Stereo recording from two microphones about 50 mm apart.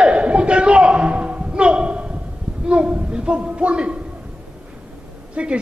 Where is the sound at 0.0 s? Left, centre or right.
Right.